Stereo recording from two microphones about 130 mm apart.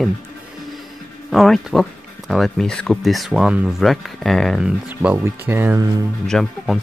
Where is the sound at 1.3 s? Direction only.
Centre (ahead or behind).